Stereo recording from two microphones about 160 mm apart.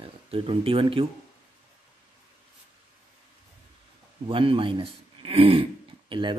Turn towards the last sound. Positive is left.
turn(degrees=-30)  # may be behind; listen again after turning